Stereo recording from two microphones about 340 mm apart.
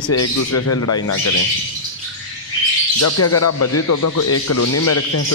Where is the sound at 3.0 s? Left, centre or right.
Left.